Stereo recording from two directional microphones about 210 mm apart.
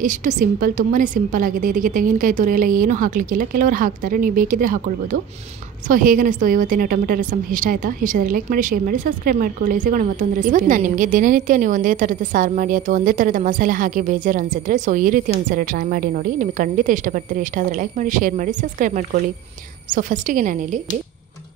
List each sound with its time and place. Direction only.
0.0 s a woman's voice: 40° right (ahead or behind)